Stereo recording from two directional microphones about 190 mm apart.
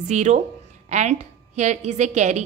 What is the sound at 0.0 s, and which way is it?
A woman's voice, 40° right (ahead or behind).